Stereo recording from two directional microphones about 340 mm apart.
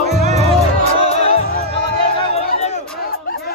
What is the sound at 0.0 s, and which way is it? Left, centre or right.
Music, centre.